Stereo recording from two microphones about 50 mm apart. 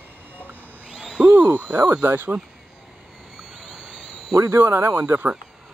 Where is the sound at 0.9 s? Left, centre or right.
Centre.